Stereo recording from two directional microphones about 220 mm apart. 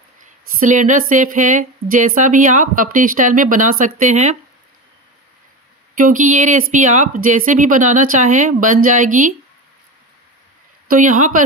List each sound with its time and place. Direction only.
0.2 s speech: 35° right (ahead or behind)
5.9 s speech: 35° right (ahead or behind)
10.9 s speech: 35° right (ahead or behind)